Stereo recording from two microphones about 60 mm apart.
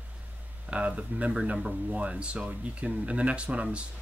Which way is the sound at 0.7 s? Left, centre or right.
Right.